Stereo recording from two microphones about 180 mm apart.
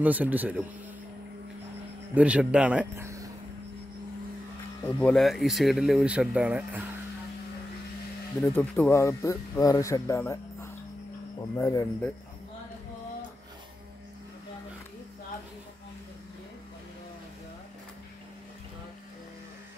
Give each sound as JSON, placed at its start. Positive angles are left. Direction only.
{"t": 0.0, "sound": "speech", "side_deg": -10}
{"t": 2.1, "sound": "speech", "side_deg": -5}
{"t": 5.0, "sound": "speech", "side_deg": 0}
{"t": 8.4, "sound": "speech", "side_deg": 10}